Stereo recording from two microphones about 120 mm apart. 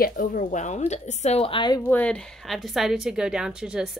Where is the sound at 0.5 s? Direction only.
85° left; by 1.7 s 45° left (ahead or behind).